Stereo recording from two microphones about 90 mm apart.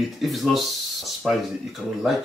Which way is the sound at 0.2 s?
Centre (ahead or behind).